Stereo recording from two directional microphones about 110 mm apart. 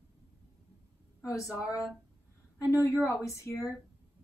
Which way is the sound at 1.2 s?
30° left (ahead or behind).